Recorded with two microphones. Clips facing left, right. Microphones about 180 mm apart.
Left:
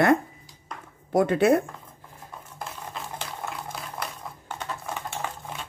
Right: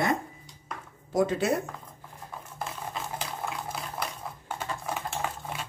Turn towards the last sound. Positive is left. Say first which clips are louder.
# even
turn(degrees=0)  # may be behind; listen again after turning